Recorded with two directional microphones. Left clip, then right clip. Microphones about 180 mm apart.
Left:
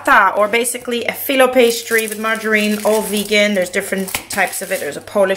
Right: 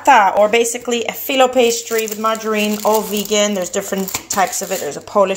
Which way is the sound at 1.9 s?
35° left (ahead or behind).